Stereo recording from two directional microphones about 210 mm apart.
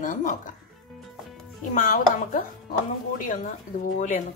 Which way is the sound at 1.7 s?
40° left (ahead or behind).